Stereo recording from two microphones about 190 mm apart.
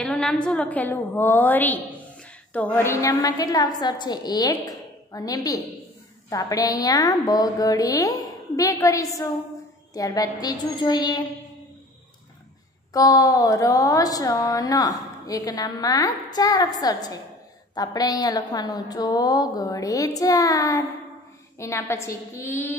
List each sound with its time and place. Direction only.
0.0 s a woman's voice: 5° left (ahead or behind); by 11.2 s 20° left (ahead or behind)
12.9 s a woman's voice: 20° left (ahead or behind)